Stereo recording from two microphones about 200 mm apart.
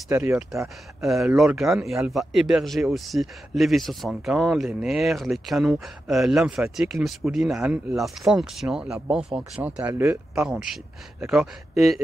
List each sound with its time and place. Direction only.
0.1 s a man's voice: 10° right (ahead or behind)